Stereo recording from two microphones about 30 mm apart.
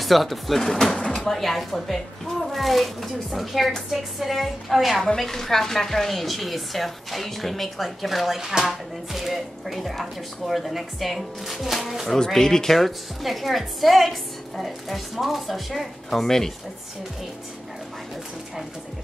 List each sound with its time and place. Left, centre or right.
0.0 s speech: centre
0.6 s speech: centre
5.0 s speech: centre
12.4 s speech: centre
12.7 s speech: centre